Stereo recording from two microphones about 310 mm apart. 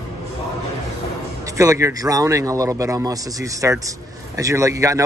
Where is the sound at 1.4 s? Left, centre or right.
Centre.